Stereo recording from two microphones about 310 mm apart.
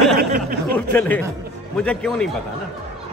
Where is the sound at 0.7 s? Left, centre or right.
Centre.